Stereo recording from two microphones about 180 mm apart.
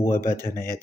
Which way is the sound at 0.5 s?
55° left (ahead or behind).